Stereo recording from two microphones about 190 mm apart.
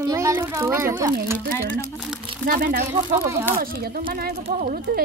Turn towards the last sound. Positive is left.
turn(degrees=-50)  # may be behind; listen again after turning